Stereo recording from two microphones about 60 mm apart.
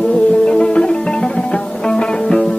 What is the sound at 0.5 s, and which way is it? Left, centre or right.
Music, centre.